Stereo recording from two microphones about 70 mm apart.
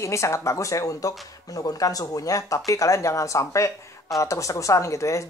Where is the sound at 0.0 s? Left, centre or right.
Left.